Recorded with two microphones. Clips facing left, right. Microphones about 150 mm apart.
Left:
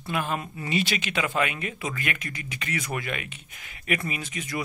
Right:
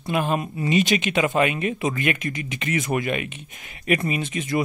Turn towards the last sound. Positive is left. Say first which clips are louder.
# right 8 dB
turn(degrees=-25)  # may be behind; listen again after turning